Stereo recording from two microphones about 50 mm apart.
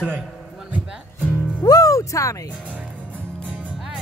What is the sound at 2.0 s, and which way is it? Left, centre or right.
Speech, left.